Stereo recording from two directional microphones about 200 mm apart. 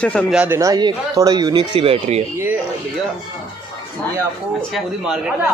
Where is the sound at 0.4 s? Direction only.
15° right (ahead or behind); by 2.2 s 30° right (ahead or behind).